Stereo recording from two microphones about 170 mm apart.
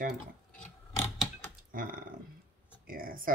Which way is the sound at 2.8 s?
55° right (ahead or behind).